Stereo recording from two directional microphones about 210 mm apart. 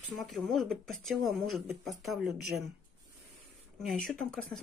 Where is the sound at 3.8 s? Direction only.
Centre (ahead or behind).